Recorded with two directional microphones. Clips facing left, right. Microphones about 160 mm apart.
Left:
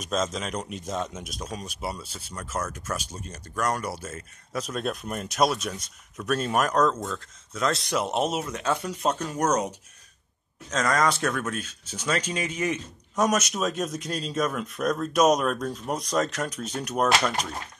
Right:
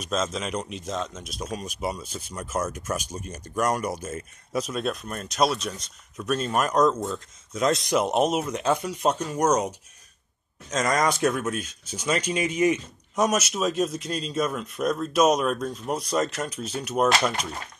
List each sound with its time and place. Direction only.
0.1 s speech: centre (ahead or behind)
0.8 s speech: 10° left (ahead or behind)
1.3 s speech: 10° right (ahead or behind)
5.0 s speech: 15° left (ahead or behind)
5.3 s speech: centre (ahead or behind)
6.7 s speech: 10° right (ahead or behind)
7.9 s speech: 5° right (ahead or behind)
8.5 s speech: 15° right (ahead or behind)